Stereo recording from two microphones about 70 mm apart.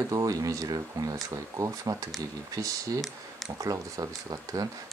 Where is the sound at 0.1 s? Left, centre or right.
Right.